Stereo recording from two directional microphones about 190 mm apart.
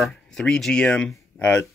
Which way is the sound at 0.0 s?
5° left (ahead or behind).